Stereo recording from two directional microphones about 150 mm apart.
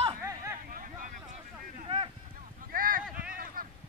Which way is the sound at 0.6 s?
70° right (ahead or behind).